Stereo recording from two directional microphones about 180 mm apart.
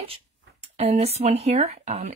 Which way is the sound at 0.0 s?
35° right (ahead or behind).